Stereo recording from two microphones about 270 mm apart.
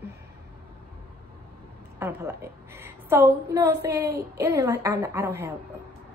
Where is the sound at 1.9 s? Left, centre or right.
Centre.